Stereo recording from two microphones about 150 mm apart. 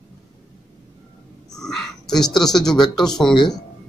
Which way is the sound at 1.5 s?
5° left (ahead or behind).